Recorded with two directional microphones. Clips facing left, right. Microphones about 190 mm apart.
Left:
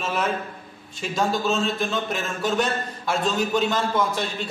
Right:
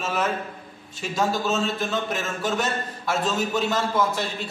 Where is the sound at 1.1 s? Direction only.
5° right (ahead or behind).